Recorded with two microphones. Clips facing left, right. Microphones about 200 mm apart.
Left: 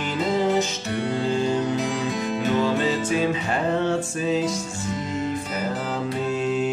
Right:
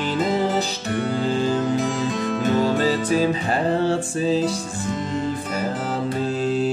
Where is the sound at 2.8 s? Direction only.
35° right (ahead or behind).